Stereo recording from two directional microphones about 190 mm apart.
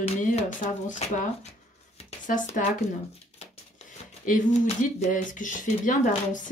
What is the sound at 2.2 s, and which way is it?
Speech, 40° left (ahead or behind).